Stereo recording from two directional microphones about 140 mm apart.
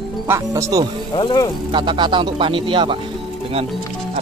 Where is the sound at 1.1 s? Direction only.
35° left (ahead or behind).